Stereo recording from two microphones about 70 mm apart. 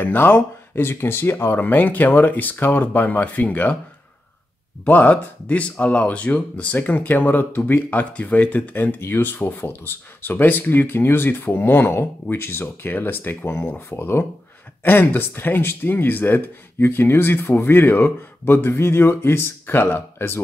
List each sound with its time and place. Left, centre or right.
0.0 s speech: left
4.8 s speech: left